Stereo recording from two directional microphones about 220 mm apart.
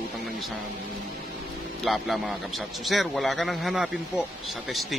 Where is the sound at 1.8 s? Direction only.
Centre (ahead or behind).